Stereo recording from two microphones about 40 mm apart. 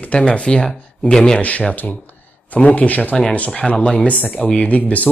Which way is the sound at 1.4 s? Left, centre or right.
Left.